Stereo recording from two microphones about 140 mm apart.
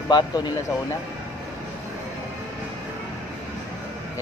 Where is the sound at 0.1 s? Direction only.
30° left (ahead or behind).